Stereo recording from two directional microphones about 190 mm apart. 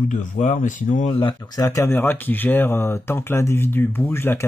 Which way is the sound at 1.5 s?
20° left (ahead or behind).